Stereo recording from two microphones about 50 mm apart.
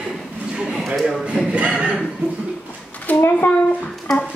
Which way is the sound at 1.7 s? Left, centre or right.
Right.